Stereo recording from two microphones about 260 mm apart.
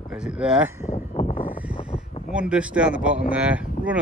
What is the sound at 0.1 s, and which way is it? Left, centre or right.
Speech, centre.